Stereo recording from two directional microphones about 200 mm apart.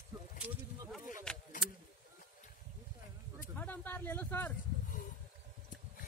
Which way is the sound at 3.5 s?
10° left (ahead or behind).